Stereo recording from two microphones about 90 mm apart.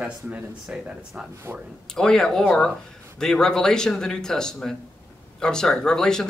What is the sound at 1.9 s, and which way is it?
Speech, 5° left (ahead or behind).